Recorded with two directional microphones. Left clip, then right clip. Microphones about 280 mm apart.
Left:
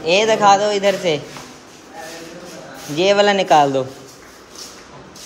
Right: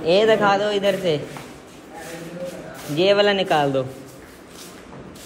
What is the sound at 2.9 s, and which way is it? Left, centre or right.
Speech, centre.